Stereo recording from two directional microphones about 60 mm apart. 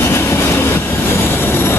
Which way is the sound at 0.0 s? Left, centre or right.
Left.